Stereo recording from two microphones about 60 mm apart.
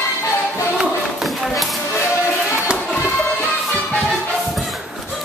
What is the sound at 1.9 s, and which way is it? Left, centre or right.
Music, left.